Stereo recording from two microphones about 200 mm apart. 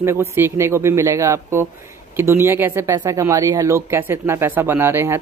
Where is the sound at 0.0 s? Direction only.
15° right (ahead or behind).